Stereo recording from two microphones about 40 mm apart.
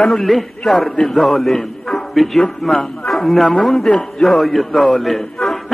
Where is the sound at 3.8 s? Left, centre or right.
Left.